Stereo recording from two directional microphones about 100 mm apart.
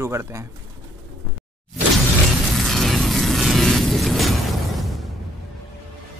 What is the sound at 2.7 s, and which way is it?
Music, centre (ahead or behind).